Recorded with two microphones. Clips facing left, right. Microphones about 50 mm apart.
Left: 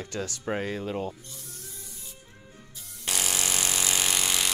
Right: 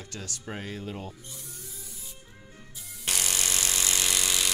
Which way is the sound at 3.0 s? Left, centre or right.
Centre.